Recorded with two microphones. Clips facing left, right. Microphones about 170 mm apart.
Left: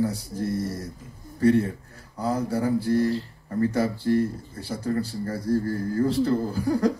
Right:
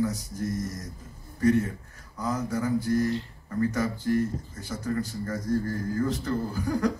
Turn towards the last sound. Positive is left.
turn(degrees=35)  # may be behind; listen again after turning